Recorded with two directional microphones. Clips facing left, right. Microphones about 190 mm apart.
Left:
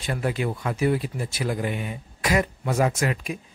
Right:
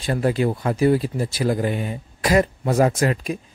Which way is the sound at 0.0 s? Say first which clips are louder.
Right 6 dB; 35° right (ahead or behind).